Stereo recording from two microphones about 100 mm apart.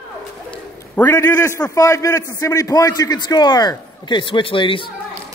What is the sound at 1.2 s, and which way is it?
A man's voice, 25° left (ahead or behind).